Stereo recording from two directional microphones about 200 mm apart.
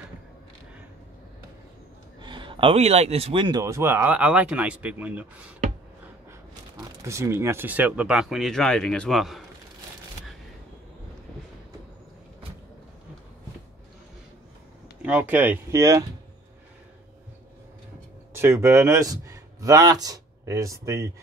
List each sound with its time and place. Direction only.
2.1 s speech: 25° right (ahead or behind); by 5.3 s 5° right (ahead or behind)
7.0 s speech: 15° right (ahead or behind)
15.0 s speech: 5° right (ahead or behind)
18.3 s speech: 15° right (ahead or behind)